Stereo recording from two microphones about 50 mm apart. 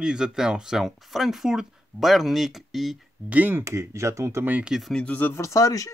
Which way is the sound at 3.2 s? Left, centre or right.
Right.